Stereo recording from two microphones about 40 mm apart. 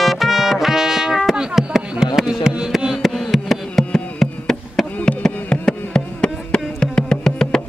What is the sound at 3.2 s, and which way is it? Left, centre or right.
Insect, centre.